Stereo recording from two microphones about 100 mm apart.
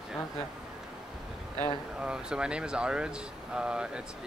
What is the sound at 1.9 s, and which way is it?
Speech, 10° right (ahead or behind).